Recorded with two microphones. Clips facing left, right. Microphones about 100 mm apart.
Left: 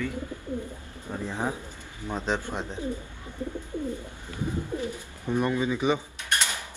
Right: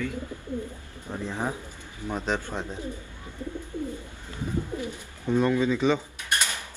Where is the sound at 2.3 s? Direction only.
20° left (ahead or behind).